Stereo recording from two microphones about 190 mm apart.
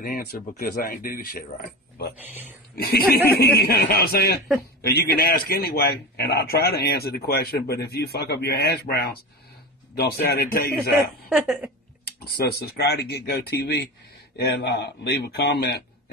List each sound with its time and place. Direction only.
0.0 s speech: 50° left (ahead or behind)
2.7 s a man's voice: 55° left (ahead or behind)
11.2 s speech: centre (ahead or behind)
12.0 s a man's voice: 55° left (ahead or behind)